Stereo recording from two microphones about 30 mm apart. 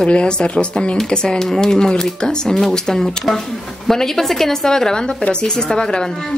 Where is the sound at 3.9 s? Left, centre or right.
Centre.